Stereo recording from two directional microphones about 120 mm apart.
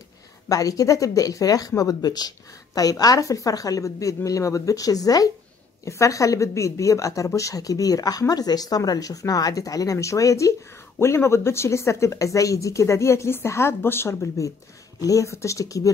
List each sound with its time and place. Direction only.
0.5 s speech: 30° left (ahead or behind)